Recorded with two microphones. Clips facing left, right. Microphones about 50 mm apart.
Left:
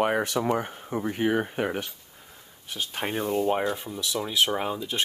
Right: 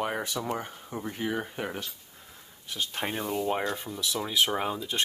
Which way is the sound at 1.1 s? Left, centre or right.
Left.